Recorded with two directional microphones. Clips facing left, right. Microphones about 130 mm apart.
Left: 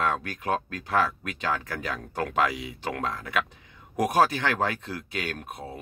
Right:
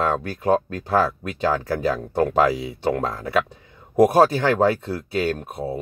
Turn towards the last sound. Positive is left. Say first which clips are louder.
# right 10 dB
turn(degrees=-30)  # may be behind; listen again after turning